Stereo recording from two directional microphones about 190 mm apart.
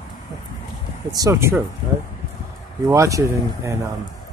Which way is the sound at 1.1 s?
15° right (ahead or behind).